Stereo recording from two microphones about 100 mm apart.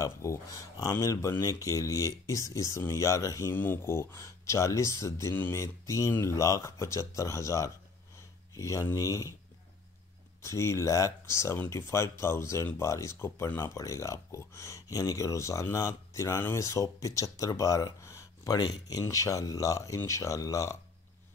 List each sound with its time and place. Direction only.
0.0 s speech: 30° left (ahead or behind)
3.5 s speech: 20° left (ahead or behind)
10.4 s speech: 30° left (ahead or behind)